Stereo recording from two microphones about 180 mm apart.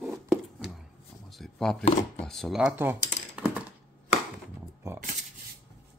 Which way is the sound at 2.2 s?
Centre (ahead or behind).